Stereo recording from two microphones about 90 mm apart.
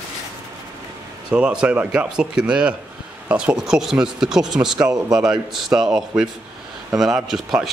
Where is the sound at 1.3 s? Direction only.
10° right (ahead or behind).